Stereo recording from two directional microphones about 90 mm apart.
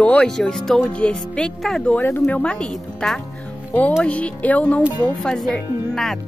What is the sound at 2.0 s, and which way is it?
A woman's voice, 20° left (ahead or behind).